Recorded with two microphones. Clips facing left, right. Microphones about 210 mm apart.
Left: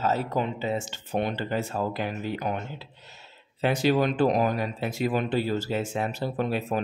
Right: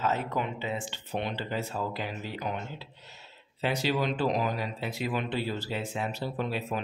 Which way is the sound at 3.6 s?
50° left (ahead or behind).